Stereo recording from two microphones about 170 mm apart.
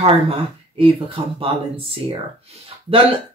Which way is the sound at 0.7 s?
30° right (ahead or behind).